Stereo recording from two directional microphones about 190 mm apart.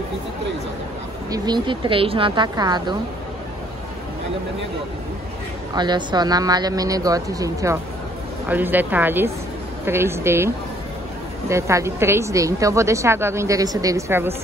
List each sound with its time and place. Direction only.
1.3 s speech: 20° right (ahead or behind)
5.8 s speech: 25° right (ahead or behind)